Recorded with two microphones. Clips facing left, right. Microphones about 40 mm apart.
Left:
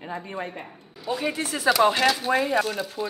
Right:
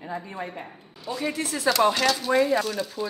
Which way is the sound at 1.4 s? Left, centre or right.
Left.